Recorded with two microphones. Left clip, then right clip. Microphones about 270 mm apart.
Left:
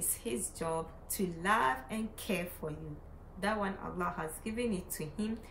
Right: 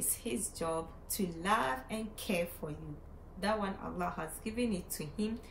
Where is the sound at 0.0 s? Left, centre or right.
Centre.